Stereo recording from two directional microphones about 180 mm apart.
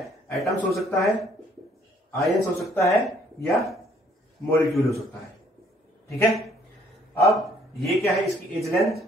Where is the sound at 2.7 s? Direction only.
15° left (ahead or behind).